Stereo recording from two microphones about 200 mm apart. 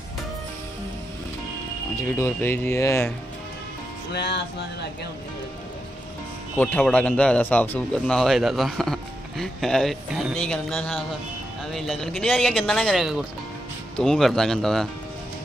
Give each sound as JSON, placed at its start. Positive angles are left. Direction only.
{"t": 2.0, "sound": "speech", "side_deg": 10}
{"t": 4.1, "sound": "music", "side_deg": 55}
{"t": 6.5, "sound": "speech", "side_deg": 10}